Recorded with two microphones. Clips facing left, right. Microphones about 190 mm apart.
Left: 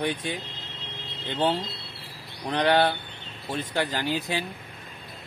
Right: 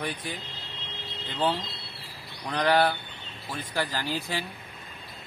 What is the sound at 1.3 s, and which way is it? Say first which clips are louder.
Speech: left 3 dB; 25° left (ahead or behind).